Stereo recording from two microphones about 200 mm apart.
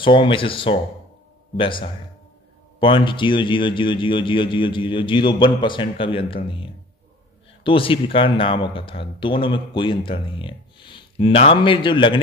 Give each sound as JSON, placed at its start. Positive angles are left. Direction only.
{"t": 0.0, "sound": "speech", "side_deg": 25}